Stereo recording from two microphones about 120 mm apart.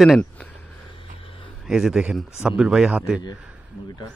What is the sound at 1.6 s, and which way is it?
Speech, 5° right (ahead or behind).